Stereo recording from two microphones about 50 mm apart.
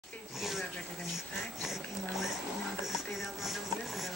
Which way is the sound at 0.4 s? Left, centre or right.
Centre.